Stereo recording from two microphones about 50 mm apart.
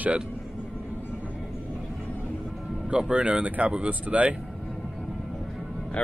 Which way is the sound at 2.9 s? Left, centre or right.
Right.